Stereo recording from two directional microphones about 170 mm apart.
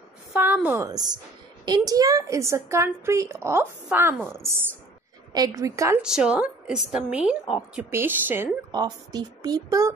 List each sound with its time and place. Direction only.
0.3 s speech: 10° right (ahead or behind)
6.0 s a woman's voice: 5° right (ahead or behind)
8.7 s speech: 25° right (ahead or behind)